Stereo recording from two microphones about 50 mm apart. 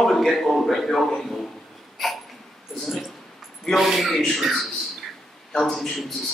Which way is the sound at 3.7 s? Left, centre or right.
Centre.